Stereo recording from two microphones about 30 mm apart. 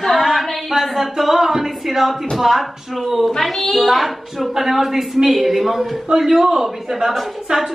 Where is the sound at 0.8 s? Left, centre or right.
Centre.